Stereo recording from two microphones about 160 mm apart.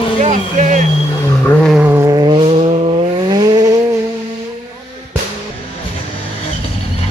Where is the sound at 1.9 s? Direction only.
20° right (ahead or behind).